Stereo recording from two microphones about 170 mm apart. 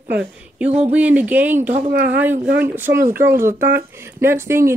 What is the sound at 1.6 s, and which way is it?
Speech, 50° right (ahead or behind).